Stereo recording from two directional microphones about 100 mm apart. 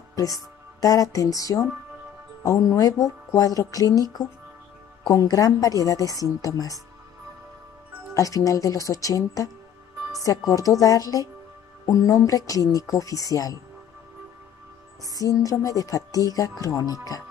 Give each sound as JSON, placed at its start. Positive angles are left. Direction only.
{"t": 0.1, "sound": "speech", "side_deg": 35}
{"t": 5.1, "sound": "speech", "side_deg": 35}
{"t": 8.1, "sound": "speech", "side_deg": 35}
{"t": 15.1, "sound": "speech", "side_deg": 35}